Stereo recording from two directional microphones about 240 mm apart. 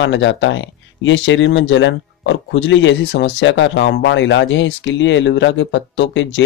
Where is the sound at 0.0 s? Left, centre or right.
Left.